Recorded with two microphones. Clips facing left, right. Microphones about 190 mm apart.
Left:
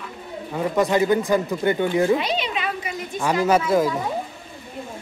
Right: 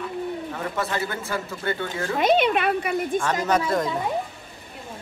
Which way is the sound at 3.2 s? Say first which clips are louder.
Left 9 dB; 10° left (ahead or behind).